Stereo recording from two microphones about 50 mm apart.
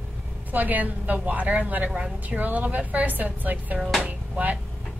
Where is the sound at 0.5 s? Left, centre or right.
Right.